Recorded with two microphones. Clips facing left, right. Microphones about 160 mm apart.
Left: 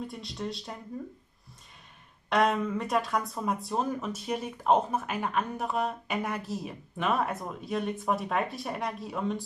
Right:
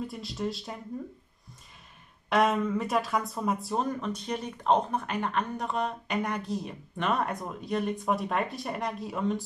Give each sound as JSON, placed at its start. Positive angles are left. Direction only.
{"t": 0.0, "sound": "speech", "side_deg": 0}
{"t": 2.2, "sound": "speech", "side_deg": 0}